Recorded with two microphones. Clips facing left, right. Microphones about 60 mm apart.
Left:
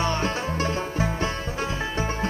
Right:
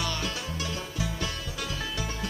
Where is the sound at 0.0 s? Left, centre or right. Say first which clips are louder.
Left 7 dB; left.